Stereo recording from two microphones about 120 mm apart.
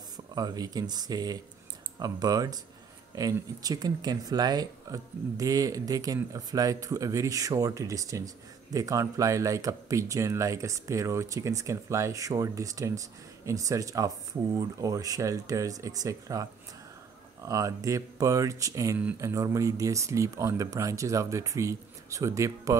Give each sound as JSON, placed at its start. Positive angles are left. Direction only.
{"t": 0.3, "sound": "speech", "side_deg": -35}
{"t": 17.5, "sound": "speech", "side_deg": -25}